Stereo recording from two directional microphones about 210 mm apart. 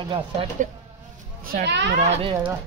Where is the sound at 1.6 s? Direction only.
55° right (ahead or behind).